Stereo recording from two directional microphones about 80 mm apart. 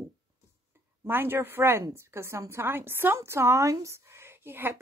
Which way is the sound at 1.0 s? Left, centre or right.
Right.